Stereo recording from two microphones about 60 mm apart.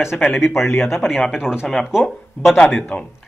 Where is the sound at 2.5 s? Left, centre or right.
Centre.